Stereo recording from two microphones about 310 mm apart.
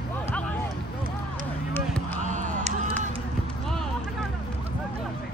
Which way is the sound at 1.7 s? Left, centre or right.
Centre.